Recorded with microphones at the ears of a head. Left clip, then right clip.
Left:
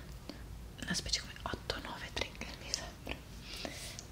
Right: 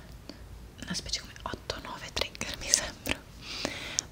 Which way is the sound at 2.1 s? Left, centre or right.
Right.